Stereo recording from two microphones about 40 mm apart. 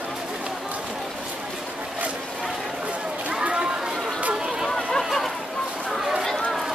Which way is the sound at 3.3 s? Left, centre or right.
Right.